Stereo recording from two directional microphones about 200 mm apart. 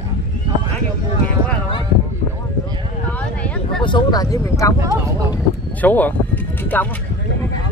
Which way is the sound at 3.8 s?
20° left (ahead or behind).